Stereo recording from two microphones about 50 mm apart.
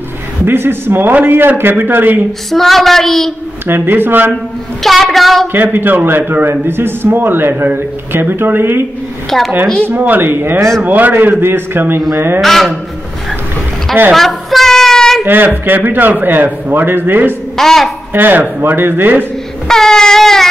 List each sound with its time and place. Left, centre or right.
0.5 s a man's voice: right
2.5 s a woman's voice: centre
3.6 s a man's voice: right
4.8 s a woman's voice: centre
5.5 s a man's voice: right
9.8 s a man's voice: right
11.4 s a man's voice: right
12.4 s a woman's voice: centre
14.1 s a sound: centre
15.2 s a man's voice: right
17.6 s a woman's voice: centre
18.1 s a man's voice: right
19.7 s a sound: centre